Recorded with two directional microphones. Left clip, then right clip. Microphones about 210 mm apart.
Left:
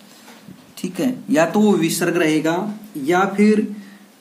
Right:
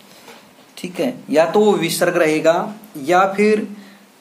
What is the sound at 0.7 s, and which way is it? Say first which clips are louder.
Speech: right 1 dB; 20° left (ahead or behind).